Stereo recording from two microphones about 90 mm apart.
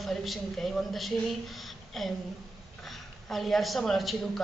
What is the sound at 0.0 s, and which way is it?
A woman's voice, centre (ahead or behind).